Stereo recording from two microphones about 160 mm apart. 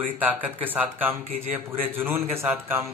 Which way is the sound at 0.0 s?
10° right (ahead or behind).